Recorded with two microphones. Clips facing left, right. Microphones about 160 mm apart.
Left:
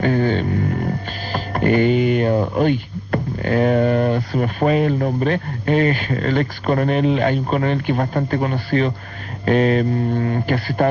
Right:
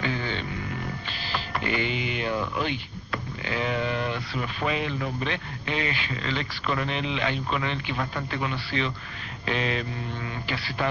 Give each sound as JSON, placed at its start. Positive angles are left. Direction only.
{"t": 0.0, "sound": "speech", "side_deg": 50}